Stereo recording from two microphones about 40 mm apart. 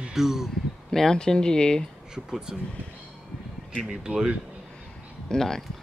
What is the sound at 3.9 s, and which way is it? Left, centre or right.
Speech, centre.